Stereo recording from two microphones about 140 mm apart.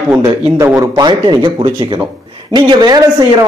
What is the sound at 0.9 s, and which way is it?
A man's voice, 30° right (ahead or behind).